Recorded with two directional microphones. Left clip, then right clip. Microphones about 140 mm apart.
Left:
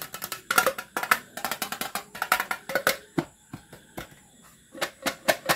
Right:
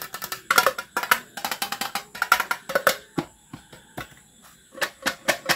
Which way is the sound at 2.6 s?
5° right (ahead or behind).